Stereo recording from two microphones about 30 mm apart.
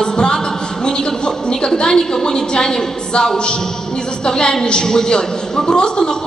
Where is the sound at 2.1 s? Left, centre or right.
Left.